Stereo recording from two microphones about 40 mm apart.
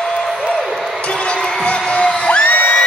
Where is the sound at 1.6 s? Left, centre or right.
Left.